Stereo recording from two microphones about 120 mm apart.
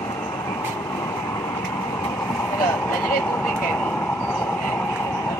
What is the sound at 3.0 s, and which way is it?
Vehicle, 15° left (ahead or behind).